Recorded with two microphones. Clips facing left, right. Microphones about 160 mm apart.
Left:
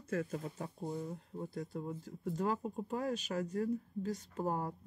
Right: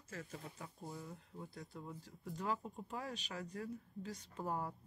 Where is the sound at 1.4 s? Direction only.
50° left (ahead or behind).